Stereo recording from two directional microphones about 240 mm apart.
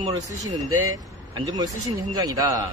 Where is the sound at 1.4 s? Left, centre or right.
Centre.